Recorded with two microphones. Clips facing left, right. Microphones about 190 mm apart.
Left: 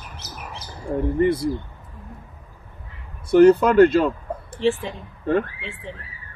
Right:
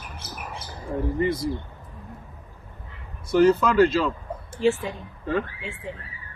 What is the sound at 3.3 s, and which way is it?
Speech, 60° left (ahead or behind).